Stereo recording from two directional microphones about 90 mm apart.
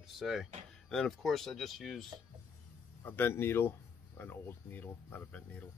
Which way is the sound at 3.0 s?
25° left (ahead or behind).